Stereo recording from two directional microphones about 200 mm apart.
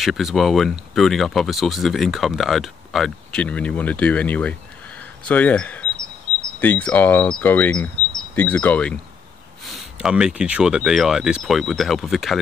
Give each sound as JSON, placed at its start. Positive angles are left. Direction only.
{"t": 0.0, "sound": "speech", "side_deg": 0}